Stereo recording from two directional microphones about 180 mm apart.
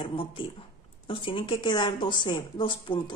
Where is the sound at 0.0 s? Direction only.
30° left (ahead or behind).